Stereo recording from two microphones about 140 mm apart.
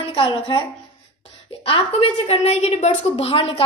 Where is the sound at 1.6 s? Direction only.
40° left (ahead or behind).